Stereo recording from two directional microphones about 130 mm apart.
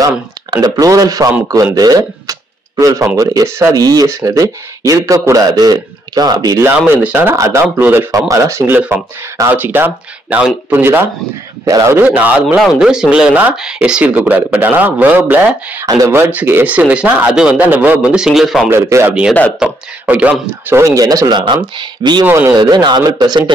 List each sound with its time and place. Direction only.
0.6 s speech: 30° right (ahead or behind)
6.6 s speech: 15° right (ahead or behind)
12.5 s speech: centre (ahead or behind)
15.8 s speech: 25° right (ahead or behind); by 18.7 s centre (ahead or behind)
18.7 s a man's voice: 20° right (ahead or behind)
22.2 s speech: 15° right (ahead or behind)
22.6 s a man's voice: 35° right (ahead or behind)